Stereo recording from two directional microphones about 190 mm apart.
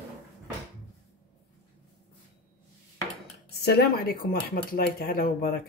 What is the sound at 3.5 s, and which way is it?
Speech, 55° left (ahead or behind).